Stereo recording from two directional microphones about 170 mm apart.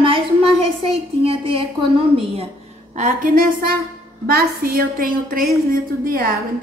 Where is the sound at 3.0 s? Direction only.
50° right (ahead or behind).